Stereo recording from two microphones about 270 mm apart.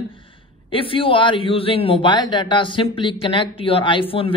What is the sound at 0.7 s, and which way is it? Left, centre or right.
Speech, centre.